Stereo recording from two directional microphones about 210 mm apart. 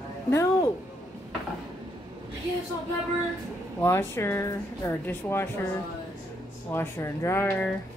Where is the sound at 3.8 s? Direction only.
10° left (ahead or behind).